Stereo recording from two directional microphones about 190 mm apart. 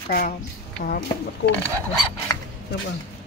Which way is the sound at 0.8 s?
40° left (ahead or behind).